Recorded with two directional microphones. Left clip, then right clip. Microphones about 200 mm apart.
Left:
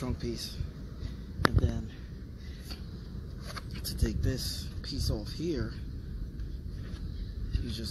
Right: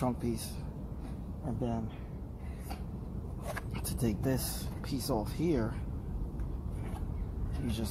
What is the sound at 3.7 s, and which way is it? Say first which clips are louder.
Speech: even; 60° right (ahead or behind).